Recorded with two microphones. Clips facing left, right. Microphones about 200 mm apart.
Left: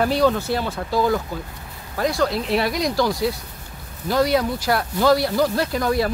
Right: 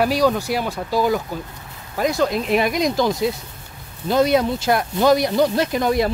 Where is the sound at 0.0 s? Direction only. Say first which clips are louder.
Right 1 dB; 10° right (ahead or behind).